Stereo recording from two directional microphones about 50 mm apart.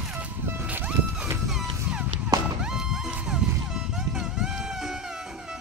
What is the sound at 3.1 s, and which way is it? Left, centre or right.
Vehicle, centre.